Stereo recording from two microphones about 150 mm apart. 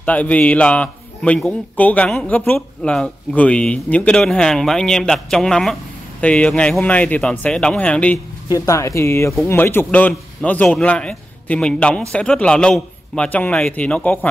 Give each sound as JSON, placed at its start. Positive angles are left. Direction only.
{"t": 0.0, "sound": "a man's voice", "side_deg": 10}
{"t": 8.5, "sound": "a man's voice", "side_deg": 20}